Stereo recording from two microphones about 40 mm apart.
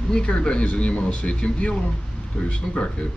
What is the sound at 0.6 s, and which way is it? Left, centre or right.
Speech, left.